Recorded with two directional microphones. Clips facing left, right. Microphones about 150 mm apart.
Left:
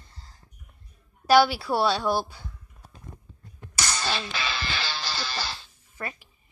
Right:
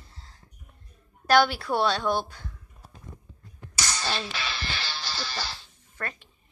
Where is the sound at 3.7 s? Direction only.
60° left (ahead or behind).